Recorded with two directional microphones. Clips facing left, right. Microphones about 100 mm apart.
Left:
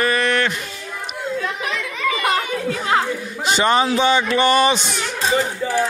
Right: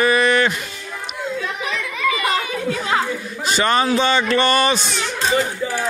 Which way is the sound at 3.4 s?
20° left (ahead or behind).